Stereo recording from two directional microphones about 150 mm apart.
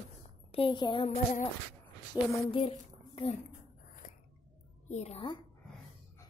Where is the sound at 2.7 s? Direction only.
45° left (ahead or behind).